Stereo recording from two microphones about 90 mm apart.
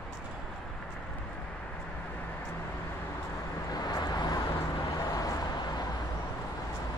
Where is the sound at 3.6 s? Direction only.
45° left (ahead or behind).